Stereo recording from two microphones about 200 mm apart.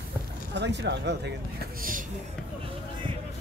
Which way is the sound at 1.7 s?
45° right (ahead or behind).